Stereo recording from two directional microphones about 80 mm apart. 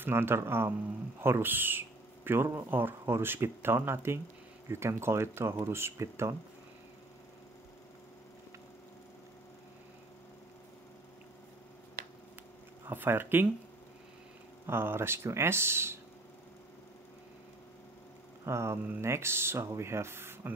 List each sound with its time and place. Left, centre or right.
0.0 s speech: right
12.8 s speech: right
14.7 s speech: right
18.4 s speech: right